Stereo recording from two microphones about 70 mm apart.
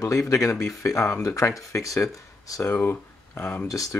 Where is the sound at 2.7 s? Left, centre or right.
Left.